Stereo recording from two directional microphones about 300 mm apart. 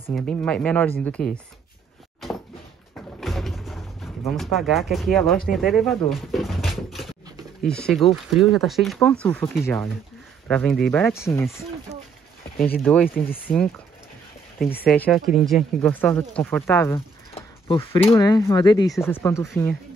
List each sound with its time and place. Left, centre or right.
0.1 s speech: centre
3.2 s a sound: centre
7.6 s speech: centre
12.8 s speech: centre
14.9 s speech: centre